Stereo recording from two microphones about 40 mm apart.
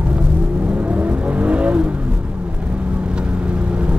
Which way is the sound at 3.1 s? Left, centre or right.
Right.